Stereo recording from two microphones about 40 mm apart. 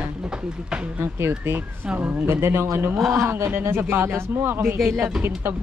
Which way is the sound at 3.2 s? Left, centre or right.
Right.